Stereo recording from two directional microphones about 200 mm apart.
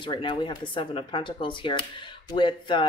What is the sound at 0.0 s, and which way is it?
Speech, 25° left (ahead or behind).